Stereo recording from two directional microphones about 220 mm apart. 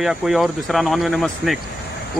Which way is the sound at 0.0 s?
Centre (ahead or behind).